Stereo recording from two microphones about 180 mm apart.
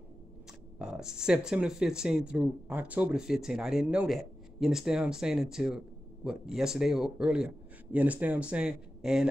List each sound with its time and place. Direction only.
0.7 s speech: 5° right (ahead or behind)